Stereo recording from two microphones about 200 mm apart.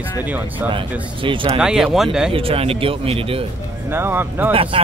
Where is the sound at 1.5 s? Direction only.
5° right (ahead or behind).